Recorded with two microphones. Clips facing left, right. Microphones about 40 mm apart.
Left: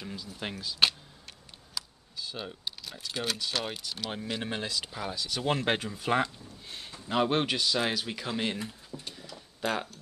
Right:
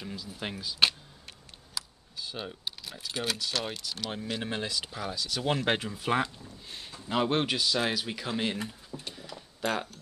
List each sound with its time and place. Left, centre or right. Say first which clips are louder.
0.0 s speech: even; centre
8.9 s a sound: right 2 dB; centre
9.6 s speech: even; centre